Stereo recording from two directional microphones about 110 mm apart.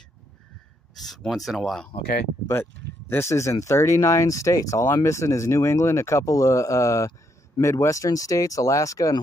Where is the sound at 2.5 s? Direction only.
20° left (ahead or behind).